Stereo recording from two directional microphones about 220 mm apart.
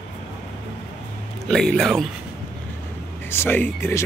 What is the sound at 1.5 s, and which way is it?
Speech, centre (ahead or behind).